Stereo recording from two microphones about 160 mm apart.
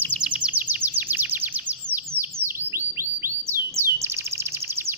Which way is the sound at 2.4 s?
15° right (ahead or behind).